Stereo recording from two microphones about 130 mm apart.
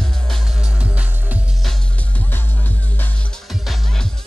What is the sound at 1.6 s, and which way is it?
Music, 5° left (ahead or behind).